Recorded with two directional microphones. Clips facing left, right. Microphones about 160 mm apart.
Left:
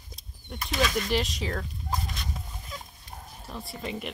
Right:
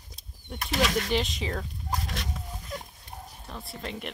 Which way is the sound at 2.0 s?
85° right.